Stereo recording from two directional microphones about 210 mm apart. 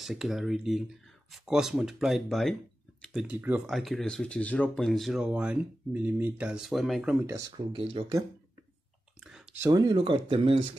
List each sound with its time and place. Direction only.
0.0 s speech: centre (ahead or behind)
7.2 s speech: 15° right (ahead or behind)
7.7 s speech: 25° right (ahead or behind)
9.2 s clicking: centre (ahead or behind)
9.6 s speech: 20° right (ahead or behind)